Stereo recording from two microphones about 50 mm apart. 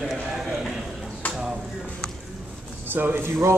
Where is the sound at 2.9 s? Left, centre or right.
Right.